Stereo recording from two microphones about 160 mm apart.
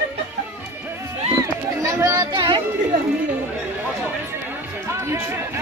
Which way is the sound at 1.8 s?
20° right (ahead or behind).